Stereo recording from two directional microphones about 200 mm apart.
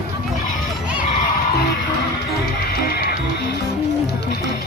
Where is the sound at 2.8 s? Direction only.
50° left (ahead or behind).